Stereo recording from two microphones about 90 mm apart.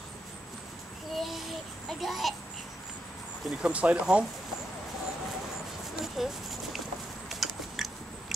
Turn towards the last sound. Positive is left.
turn(degrees=0)  # may be behind; listen again after turning